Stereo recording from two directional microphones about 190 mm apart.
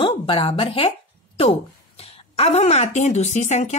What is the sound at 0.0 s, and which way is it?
A woman's voice, 25° left (ahead or behind).